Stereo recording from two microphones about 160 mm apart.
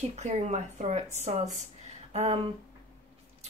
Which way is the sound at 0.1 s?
45° right (ahead or behind).